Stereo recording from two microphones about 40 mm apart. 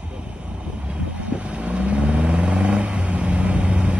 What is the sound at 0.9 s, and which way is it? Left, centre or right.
Vehicle, right.